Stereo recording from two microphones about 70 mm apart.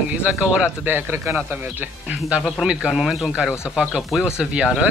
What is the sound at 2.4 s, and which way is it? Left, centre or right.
A man's voice, centre.